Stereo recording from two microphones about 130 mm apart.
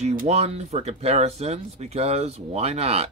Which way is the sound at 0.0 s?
90° right.